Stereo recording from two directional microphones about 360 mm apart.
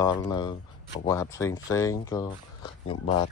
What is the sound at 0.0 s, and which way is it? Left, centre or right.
Speech, centre.